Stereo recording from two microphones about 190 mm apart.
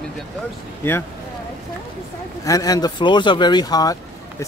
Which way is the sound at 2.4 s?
20° left (ahead or behind).